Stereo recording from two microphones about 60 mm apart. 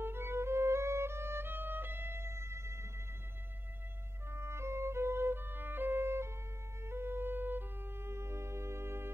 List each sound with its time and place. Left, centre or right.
0.0 s music: right
4.3 s music: right